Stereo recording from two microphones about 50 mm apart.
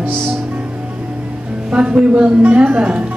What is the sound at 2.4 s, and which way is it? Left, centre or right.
Speech, right.